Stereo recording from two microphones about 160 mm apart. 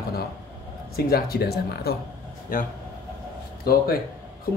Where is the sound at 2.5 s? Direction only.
55° left (ahead or behind).